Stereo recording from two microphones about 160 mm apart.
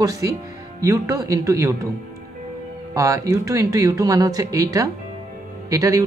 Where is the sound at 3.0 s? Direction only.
20° right (ahead or behind).